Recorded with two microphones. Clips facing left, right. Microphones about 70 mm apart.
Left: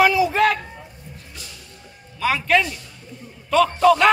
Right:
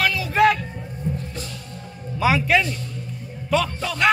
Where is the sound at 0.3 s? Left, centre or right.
Centre.